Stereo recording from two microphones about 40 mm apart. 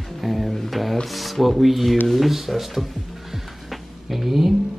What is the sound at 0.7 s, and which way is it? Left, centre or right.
Music, centre.